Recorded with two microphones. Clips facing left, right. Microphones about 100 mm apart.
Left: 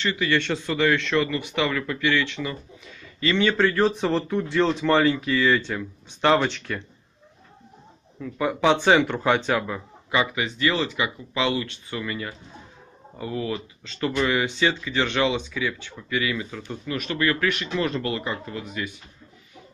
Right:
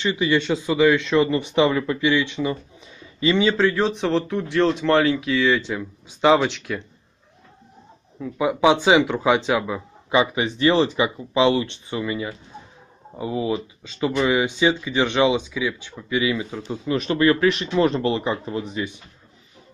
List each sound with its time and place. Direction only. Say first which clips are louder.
0.0 s speech: right 3 dB; 15° right (ahead or behind)
3.5 s speech: right 1 dB; centre (ahead or behind)
8.2 s speech: right 4 dB; 15° right (ahead or behind)
10.1 s speech: right 4 dB; 25° right (ahead or behind)